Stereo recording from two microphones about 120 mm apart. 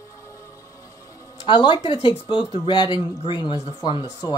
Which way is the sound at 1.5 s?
40° left (ahead or behind).